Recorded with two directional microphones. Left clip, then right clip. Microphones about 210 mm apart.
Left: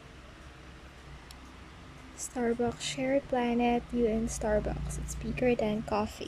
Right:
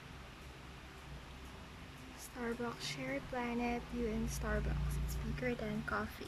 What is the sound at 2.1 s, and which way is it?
Speech, 15° left (ahead or behind).